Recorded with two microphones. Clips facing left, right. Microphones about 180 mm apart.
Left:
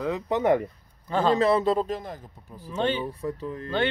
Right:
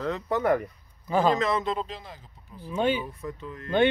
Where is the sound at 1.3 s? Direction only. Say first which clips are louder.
Left 5 dB; 35° left (ahead or behind).